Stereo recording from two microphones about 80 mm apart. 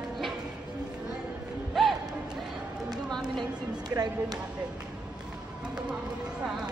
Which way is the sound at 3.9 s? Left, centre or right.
Right.